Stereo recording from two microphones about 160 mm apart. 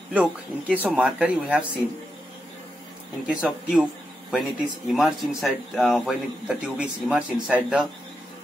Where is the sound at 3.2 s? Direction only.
5° right (ahead or behind).